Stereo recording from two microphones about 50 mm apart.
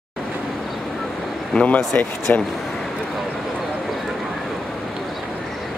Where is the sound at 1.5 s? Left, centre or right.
Left.